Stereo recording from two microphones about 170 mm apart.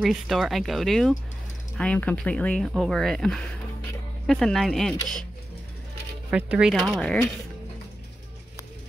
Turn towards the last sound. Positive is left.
turn(degrees=5)  # may be behind; listen again after turning